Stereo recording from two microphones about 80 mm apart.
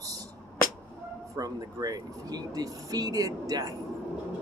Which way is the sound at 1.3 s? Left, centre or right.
Right.